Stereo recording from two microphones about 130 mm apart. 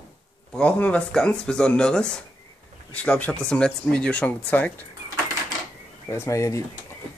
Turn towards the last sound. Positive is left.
turn(degrees=25)  # may be behind; listen again after turning